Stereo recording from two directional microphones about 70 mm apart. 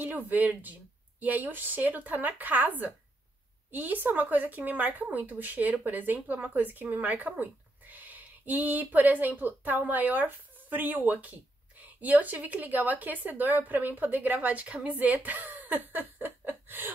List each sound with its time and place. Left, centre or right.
0.0 s speech: right
3.7 s speech: right